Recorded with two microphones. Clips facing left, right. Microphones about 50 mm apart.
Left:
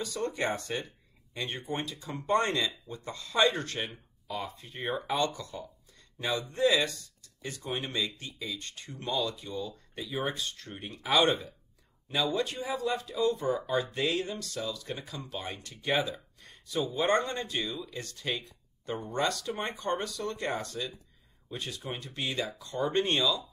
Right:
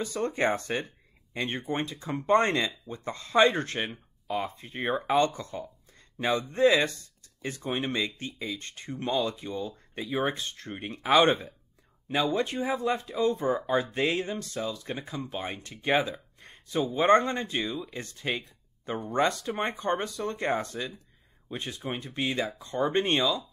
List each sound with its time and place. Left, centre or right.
0.0 s speech: right